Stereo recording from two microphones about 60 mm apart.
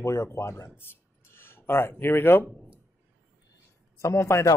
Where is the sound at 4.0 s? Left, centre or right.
Left.